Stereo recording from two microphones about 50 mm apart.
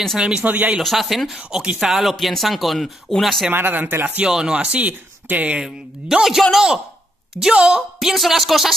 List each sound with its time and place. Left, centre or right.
0.4 s speech: right
0.8 s speech: centre
1.5 s speech: right
1.8 s speech: centre
3.5 s speech: right
4.2 s speech: centre
5.6 s speech: centre
8.1 s speech: centre